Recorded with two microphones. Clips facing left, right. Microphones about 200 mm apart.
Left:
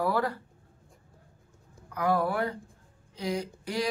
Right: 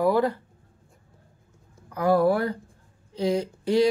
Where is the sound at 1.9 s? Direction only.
35° right (ahead or behind).